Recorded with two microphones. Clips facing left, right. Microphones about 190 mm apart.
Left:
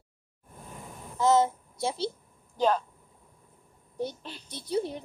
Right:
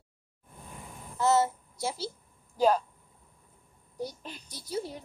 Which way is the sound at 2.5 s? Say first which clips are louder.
Right 1 dB; 10° right (ahead or behind).